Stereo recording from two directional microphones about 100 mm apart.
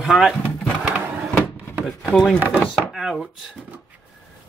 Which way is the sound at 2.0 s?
5° left (ahead or behind).